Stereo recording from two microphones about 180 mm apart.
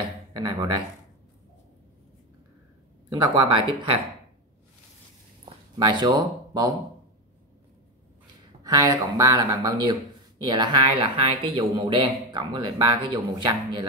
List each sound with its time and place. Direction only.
0.3 s speech: 20° right (ahead or behind)
3.1 s speech: 25° right (ahead or behind)
5.4 s a sound: 25° right (ahead or behind)
8.6 s speech: 20° right (ahead or behind)